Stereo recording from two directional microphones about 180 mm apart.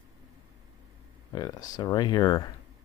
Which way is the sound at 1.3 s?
20° left (ahead or behind).